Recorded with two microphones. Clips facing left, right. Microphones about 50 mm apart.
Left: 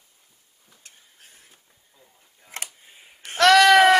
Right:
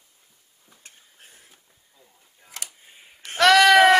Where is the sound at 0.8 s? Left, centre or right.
Right.